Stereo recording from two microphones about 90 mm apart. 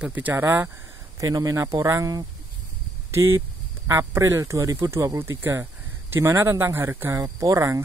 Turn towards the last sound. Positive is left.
turn(degrees=-35)  # may be behind; listen again after turning